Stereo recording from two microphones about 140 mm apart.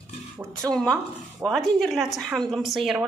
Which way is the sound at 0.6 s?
25° right (ahead or behind).